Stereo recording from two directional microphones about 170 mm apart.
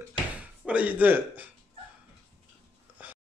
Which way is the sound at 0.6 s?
10° right (ahead or behind).